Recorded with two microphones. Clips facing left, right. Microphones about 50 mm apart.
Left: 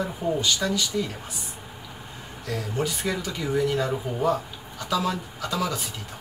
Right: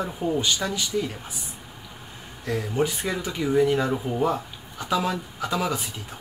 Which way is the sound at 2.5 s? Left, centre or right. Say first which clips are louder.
Right 3 dB; right.